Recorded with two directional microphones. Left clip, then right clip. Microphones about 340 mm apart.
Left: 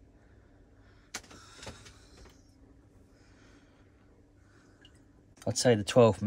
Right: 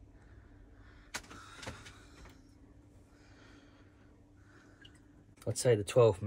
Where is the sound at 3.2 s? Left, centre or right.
Centre.